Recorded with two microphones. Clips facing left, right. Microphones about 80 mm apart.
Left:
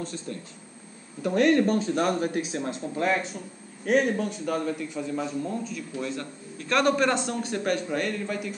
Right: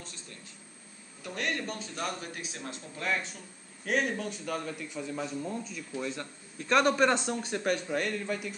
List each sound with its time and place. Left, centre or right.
1.2 s speech: left
2.5 s speech: left
3.8 s a man's voice: centre